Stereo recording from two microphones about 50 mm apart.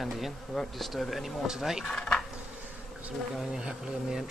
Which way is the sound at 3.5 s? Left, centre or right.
Centre.